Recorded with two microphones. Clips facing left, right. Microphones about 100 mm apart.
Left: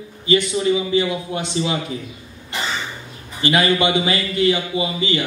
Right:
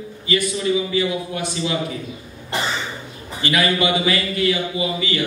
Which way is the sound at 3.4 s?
25° left (ahead or behind).